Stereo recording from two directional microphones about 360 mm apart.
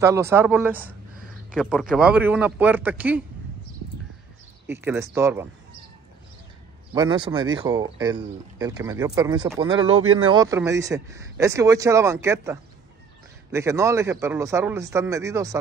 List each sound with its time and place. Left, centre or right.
0.0 s speech: centre
3.8 s a sound: right
4.6 s speech: centre
6.9 s speech: centre
9.8 s speech: right
10.2 s speech: centre